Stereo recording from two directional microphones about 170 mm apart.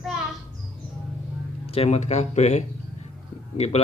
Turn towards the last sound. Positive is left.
turn(degrees=40)  # may be behind; listen again after turning